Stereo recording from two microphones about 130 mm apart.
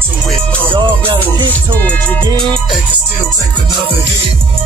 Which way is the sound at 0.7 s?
35° right (ahead or behind).